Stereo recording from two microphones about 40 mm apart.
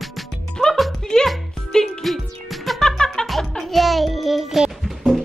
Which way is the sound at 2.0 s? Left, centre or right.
Centre.